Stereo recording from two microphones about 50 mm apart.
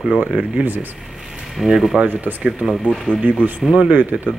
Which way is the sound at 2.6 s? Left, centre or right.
Centre.